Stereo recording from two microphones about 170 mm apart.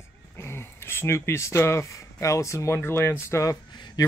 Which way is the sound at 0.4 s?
15° left (ahead or behind).